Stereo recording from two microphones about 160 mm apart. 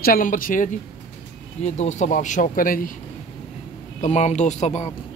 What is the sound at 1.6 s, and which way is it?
Speech, 45° left (ahead or behind).